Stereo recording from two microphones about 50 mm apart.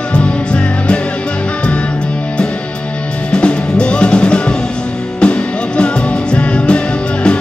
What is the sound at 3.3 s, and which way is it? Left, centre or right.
Music, centre.